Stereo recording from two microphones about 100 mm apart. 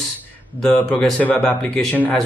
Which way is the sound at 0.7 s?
15° left (ahead or behind).